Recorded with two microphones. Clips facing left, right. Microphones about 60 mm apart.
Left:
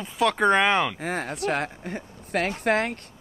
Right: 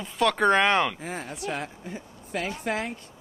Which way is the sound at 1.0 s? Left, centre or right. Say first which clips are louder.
Left 6 dB; left.